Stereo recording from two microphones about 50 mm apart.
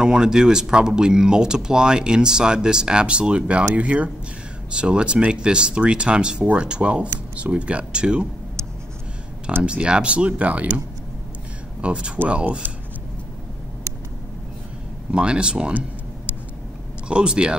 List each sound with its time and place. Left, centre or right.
0.0 s speech: centre
9.6 s speech: right
11.8 s speech: right
12.6 s a sound: right
15.1 s speech: centre
17.1 s speech: centre